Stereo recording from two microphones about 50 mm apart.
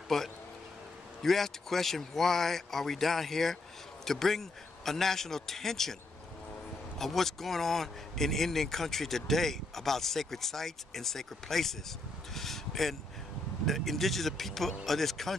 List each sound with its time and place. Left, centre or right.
0.1 s a man's voice: centre
7.0 s speech: centre
12.4 s a sound: centre
13.7 s speech: centre